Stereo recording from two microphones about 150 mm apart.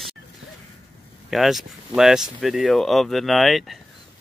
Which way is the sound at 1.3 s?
Centre (ahead or behind).